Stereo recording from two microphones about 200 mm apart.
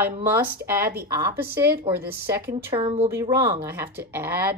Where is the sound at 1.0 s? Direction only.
15° right (ahead or behind).